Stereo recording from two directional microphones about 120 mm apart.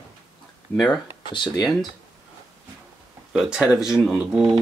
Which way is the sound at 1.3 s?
40° left (ahead or behind).